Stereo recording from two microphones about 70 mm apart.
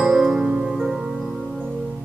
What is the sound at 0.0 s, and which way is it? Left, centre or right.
Music, centre.